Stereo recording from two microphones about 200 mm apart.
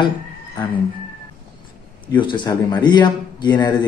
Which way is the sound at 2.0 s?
25° left (ahead or behind).